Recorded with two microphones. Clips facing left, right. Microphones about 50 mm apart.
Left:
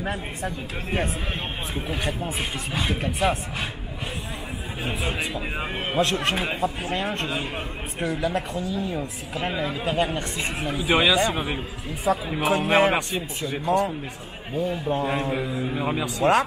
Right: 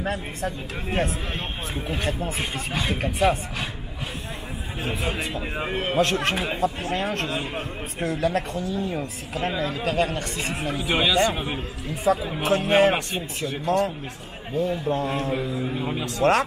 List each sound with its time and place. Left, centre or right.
0.0 s speech: centre
1.8 s a man's voice: centre
5.4 s speech: centre
8.5 s a man's voice: centre
9.4 s a man's voice: centre